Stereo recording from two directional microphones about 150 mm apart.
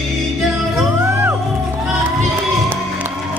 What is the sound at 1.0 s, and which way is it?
Music, 15° right (ahead or behind).